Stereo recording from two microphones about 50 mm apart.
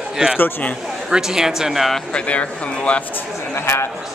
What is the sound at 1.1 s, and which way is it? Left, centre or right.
Speech, centre.